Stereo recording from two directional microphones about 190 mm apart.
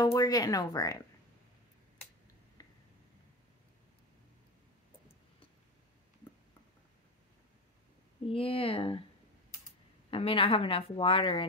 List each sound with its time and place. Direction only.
0.0 s a woman's voice: 20° left (ahead or behind)
8.3 s a woman's voice: 30° left (ahead or behind)
10.1 s a woman's voice: 30° left (ahead or behind)